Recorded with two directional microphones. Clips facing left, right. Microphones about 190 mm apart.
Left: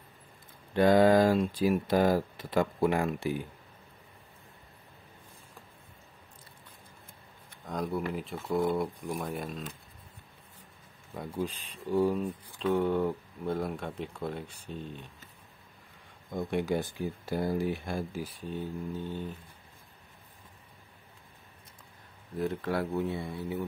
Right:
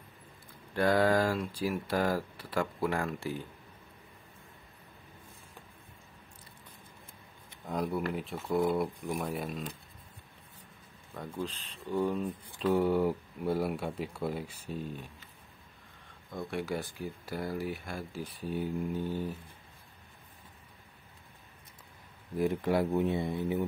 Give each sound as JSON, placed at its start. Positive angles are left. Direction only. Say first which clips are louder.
{"t": 0.7, "sound": "speech", "louder": "left 5 dB", "side_deg": 20}
{"t": 7.6, "sound": "speech", "louder": "even", "side_deg": -5}
{"t": 11.1, "sound": "speech", "louder": "left 3 dB", "side_deg": 10}
{"t": 12.5, "sound": "speech", "louder": "even", "side_deg": -5}
{"t": 16.3, "sound": "speech", "louder": "left 5 dB", "side_deg": 20}
{"t": 18.2, "sound": "speech", "louder": "right 2 dB", "side_deg": -5}
{"t": 22.4, "sound": "speech", "louder": "right 3 dB", "side_deg": -15}